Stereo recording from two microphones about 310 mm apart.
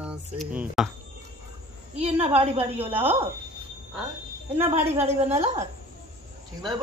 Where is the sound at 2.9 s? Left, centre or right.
Centre.